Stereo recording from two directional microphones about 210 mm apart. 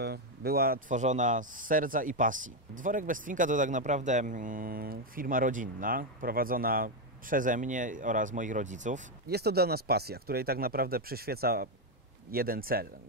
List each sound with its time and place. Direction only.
0.0 s speech: 50° right (ahead or behind)
9.3 s speech: 50° right (ahead or behind)